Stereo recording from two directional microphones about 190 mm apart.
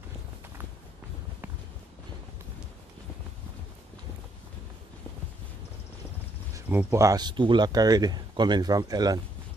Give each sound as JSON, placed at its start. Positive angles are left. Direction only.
{"t": 6.5, "sound": "speech", "side_deg": -10}